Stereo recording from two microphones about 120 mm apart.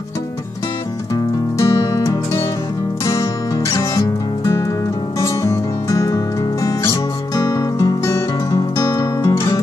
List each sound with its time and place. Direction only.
1.1 s music: 30° left (ahead or behind)
5.2 s music: 25° left (ahead or behind)